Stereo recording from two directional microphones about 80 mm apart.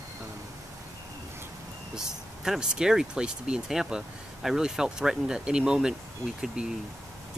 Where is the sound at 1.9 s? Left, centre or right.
Centre.